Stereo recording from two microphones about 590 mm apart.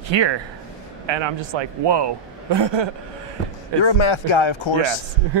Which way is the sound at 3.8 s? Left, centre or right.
Left.